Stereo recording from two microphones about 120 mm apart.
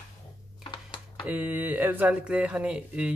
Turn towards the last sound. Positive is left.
turn(degrees=-10)  # may be behind; listen again after turning